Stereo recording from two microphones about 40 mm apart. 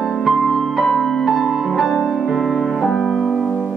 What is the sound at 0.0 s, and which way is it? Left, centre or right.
Music, centre.